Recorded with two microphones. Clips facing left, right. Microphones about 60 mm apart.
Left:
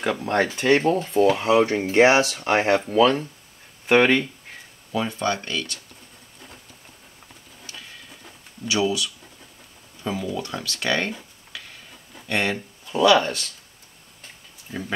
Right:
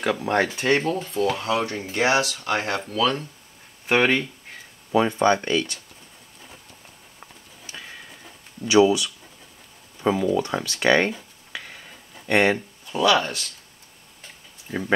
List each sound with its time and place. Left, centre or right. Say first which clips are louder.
0.2 s speech: even; centre
1.0 s speech: left 5 dB; centre
1.7 s speech: left 8 dB; left
2.0 s speech: left 4 dB; left
3.0 s speech: left 4 dB; centre
3.8 s a sound: left 3 dB; centre
4.9 s speech: right 6 dB; right
8.6 s speech: right 6 dB; right
10.3 s speech: right 6 dB; right
12.3 s speech: right 5 dB; right
12.5 s speech: left 2 dB; centre
14.7 s speech: right 6 dB; right